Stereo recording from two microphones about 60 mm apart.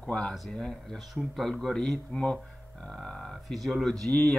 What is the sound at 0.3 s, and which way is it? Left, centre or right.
Speech, centre.